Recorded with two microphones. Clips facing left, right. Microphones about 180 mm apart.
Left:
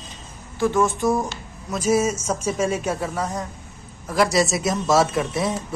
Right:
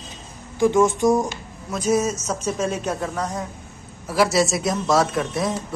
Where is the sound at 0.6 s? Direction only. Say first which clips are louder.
Right 3 dB; 15° right (ahead or behind).